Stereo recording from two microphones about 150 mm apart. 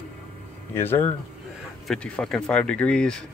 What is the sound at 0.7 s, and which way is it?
Speech, 15° left (ahead or behind).